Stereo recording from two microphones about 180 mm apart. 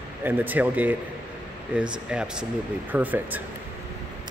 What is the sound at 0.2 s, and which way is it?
Speech, 10° right (ahead or behind).